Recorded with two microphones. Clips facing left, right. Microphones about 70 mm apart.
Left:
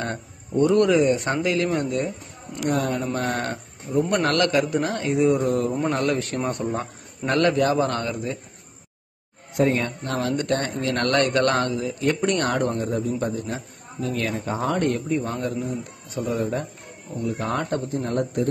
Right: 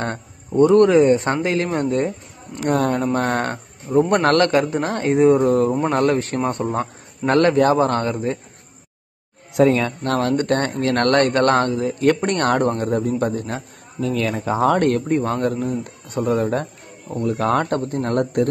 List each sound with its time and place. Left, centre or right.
0.5 s speech: right
5.7 s speech: right
5.9 s speech: right
9.5 s speech: right
14.6 s speech: right
17.2 s speech: right